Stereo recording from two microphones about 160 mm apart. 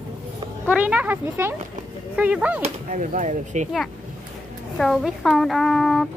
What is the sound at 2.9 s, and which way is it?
Speech, 50° right (ahead or behind).